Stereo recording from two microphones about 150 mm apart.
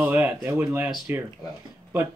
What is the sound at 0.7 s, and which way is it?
Speech, centre (ahead or behind).